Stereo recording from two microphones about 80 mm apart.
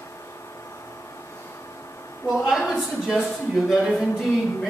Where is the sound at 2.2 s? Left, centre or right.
Centre.